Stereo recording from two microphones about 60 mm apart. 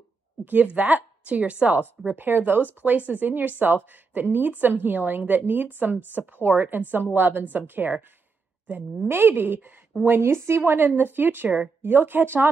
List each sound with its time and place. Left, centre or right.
0.5 s a woman's voice: right
9.0 s speech: right